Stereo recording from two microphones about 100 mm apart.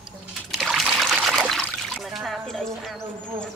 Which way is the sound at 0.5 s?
Centre (ahead or behind).